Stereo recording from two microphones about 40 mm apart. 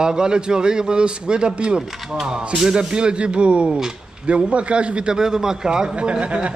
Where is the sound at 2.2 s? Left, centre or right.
Centre; by 5.1 s right.